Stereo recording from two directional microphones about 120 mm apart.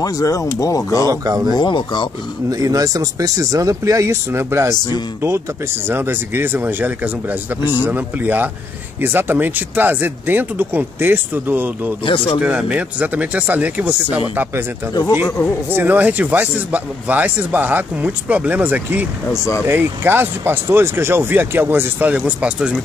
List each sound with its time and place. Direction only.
0.0 s speech: 30° left (ahead or behind)
1.2 s speech: 30° right (ahead or behind)
1.6 s speech: 40° left (ahead or behind)
2.5 s speech: 30° right (ahead or behind)
12.0 s speech: 45° left (ahead or behind)
12.4 s speech: 10° right (ahead or behind)
15.7 s speech: 15° right (ahead or behind)